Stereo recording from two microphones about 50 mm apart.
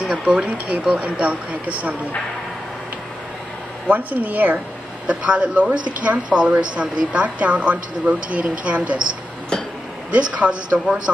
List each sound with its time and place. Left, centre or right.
0.0 s speech: right
3.9 s speech: right
5.0 s speech: right
10.1 s speech: right